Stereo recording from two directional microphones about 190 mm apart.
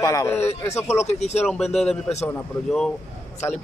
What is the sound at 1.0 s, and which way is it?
Speech, 35° left (ahead or behind).